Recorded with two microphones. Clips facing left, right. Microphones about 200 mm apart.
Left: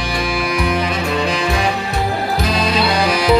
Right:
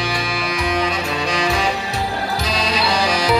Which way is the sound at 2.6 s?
55° left (ahead or behind).